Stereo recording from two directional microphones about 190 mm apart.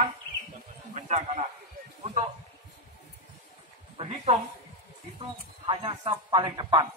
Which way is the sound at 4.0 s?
35° right (ahead or behind).